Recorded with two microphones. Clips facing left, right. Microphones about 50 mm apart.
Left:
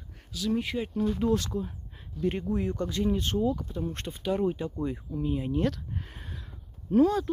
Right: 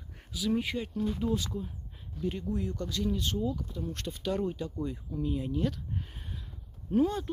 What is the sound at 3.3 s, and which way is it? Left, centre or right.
Speech, left.